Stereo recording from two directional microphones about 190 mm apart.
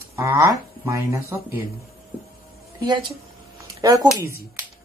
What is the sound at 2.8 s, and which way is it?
Speech, 25° right (ahead or behind).